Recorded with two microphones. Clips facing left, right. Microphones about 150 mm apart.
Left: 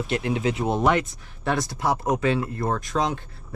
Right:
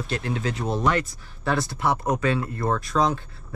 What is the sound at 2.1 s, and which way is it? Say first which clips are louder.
Speech: left 3 dB; 25° left (ahead or behind).